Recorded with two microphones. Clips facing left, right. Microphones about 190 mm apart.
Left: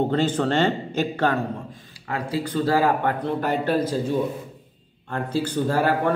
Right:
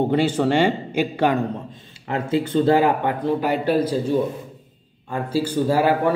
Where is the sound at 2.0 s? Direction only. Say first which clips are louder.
Right 5 dB; 25° right (ahead or behind).